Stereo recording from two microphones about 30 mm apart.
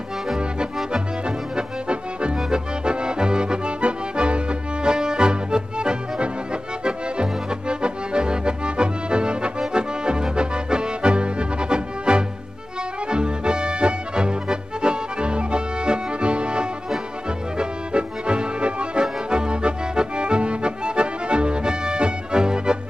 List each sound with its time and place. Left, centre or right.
1.2 s accordion: right
13.1 s music: right